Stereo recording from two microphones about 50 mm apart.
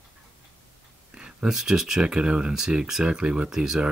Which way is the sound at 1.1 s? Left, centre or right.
Centre.